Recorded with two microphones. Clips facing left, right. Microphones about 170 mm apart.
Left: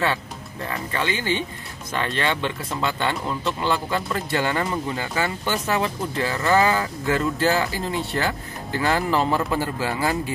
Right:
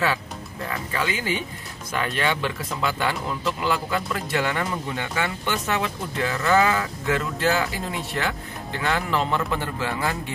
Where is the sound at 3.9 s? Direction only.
Centre (ahead or behind).